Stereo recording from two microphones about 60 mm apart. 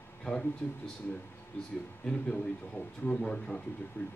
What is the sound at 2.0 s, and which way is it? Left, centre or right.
Speech, centre.